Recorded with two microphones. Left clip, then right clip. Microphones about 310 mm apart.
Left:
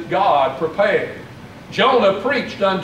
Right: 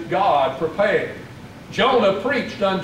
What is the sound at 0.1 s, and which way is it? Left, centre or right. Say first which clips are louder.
A man's voice: left 2 dB; centre.